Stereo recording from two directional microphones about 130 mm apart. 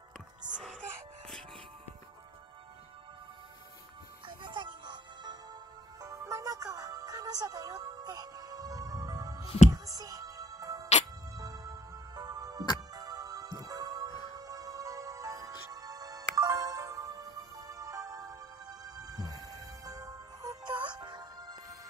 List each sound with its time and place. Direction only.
0.5 s music: 5° right (ahead or behind)
4.3 s music: 35° right (ahead or behind)